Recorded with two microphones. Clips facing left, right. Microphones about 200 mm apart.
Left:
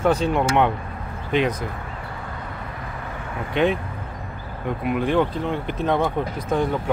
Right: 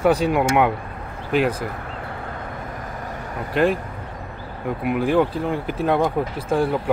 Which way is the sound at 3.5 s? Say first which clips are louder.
Right 1 dB; centre (ahead or behind).